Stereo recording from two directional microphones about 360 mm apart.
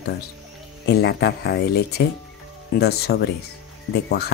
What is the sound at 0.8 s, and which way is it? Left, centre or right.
Speech, left.